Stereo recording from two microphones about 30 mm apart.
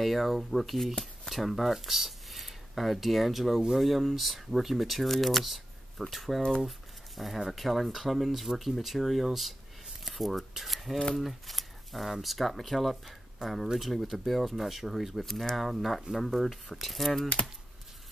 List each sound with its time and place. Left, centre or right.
0.0 s speech: centre
11.1 s a sound: centre
12.1 s speech: centre
13.4 s speech: right
13.7 s speech: centre
17.4 s speech: left